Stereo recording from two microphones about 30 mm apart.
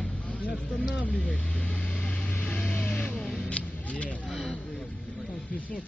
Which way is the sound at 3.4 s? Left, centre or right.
Left.